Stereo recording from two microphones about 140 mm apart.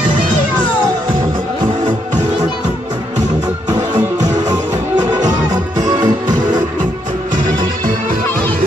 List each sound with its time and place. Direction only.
4.2 s music: 55° right (ahead or behind)
5.2 s music: 25° right (ahead or behind)